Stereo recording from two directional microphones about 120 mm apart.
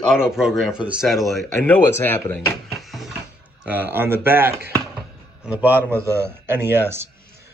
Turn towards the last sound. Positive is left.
turn(degrees=-20)  # may be behind; listen again after turning